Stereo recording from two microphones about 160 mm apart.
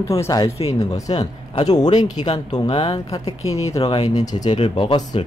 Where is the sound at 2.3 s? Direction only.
25° left (ahead or behind).